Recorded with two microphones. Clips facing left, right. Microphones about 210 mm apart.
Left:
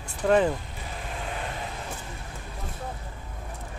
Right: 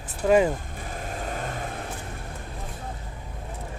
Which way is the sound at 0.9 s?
45° right (ahead or behind).